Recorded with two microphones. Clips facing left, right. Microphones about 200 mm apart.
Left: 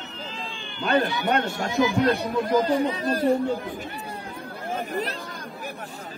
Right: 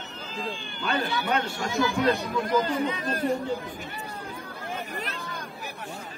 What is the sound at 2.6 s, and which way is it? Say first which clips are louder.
Speech: left 5 dB; 35° left (ahead or behind).